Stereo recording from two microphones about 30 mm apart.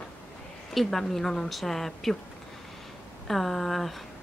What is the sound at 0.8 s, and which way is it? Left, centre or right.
Speech, centre.